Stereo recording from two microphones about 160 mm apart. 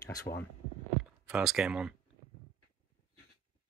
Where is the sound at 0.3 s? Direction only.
40° left (ahead or behind).